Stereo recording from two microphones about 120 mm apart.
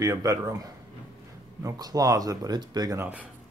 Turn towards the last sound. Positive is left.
turn(degrees=-35)  # may be behind; listen again after turning